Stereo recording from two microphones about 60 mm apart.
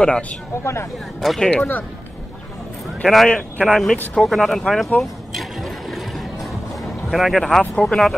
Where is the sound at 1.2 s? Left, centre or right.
Centre.